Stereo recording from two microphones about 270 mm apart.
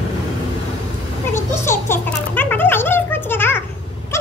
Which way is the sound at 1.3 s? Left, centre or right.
Centre.